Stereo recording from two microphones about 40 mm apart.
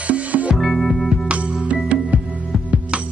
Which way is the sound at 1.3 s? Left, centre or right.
Right.